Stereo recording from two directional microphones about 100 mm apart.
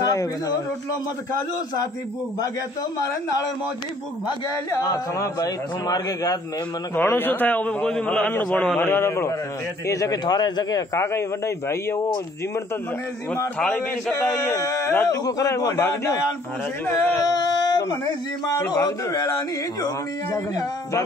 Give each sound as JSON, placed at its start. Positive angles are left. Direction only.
{"t": 0.0, "sound": "speech", "side_deg": 35}
{"t": 4.8, "sound": "speech", "side_deg": 35}
{"t": 7.0, "sound": "a man's voice", "side_deg": 20}
{"t": 11.0, "sound": "a man's voice", "side_deg": 30}
{"t": 13.6, "sound": "a man's voice", "side_deg": 5}
{"t": 14.1, "sound": "speech", "side_deg": 30}
{"t": 17.2, "sound": "a sound", "side_deg": 40}
{"t": 18.7, "sound": "speech", "side_deg": 40}